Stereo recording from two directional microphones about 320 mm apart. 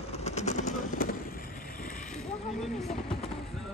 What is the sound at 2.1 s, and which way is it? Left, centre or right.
Speech, centre.